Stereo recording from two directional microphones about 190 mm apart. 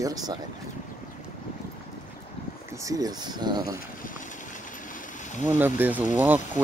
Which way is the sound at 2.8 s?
20° right (ahead or behind).